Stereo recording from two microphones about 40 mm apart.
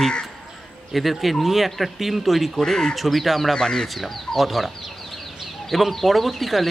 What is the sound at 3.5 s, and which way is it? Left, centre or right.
Speech, centre.